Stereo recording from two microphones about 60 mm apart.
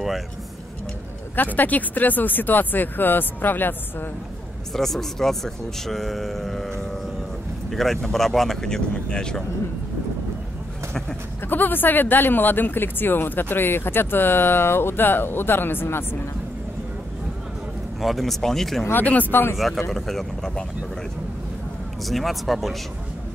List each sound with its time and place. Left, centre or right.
1.3 s speech: left
4.7 s speech: centre
11.4 s speech: left
18.0 s speech: centre
19.0 s speech: left
19.5 s speech: centre
22.0 s speech: centre